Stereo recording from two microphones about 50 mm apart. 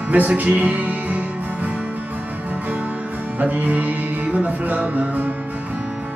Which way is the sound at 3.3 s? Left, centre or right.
Right.